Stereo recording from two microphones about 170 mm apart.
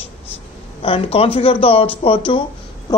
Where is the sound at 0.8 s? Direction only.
35° left (ahead or behind).